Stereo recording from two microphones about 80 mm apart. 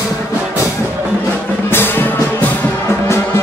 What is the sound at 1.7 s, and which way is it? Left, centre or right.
Music, left.